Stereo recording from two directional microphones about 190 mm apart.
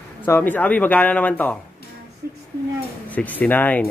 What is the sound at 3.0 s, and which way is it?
Speech, 10° left (ahead or behind).